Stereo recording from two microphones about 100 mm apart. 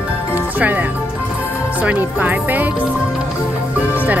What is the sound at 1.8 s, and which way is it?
Speech, 15° right (ahead or behind).